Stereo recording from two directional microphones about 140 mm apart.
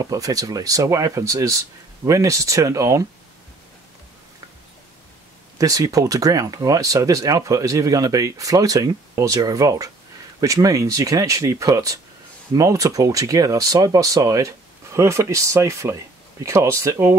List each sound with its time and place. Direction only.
0.0 s speech: 25° right (ahead or behind)
5.6 s speech: 25° right (ahead or behind)